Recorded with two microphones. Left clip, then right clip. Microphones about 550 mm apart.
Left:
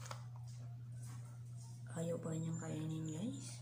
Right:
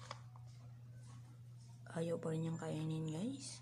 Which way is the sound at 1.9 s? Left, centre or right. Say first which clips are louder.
Right 2 dB; right.